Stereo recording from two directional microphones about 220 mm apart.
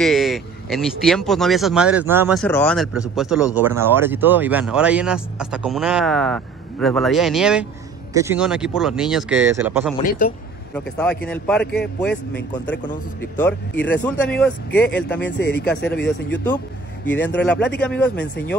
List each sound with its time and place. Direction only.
0.0 s speech: centre (ahead or behind)
2.4 s speech: 5° left (ahead or behind)
10.0 s a man's voice: 40° left (ahead or behind)
10.7 s speech: 5° left (ahead or behind)
13.2 s speech: 10° left (ahead or behind)
15.3 s speech: 50° left (ahead or behind)
17.0 s speech: 10° left (ahead or behind)
18.1 s speech: 50° left (ahead or behind)